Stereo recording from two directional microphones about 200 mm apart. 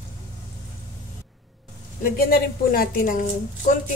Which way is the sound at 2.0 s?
45° left (ahead or behind).